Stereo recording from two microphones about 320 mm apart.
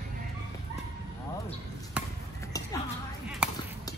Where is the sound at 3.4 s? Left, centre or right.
Centre.